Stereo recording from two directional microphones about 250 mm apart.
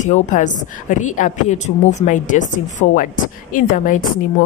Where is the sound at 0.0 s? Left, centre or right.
Left.